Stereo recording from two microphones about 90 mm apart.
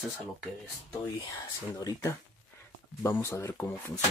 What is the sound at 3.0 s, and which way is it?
Speech, 30° left (ahead or behind).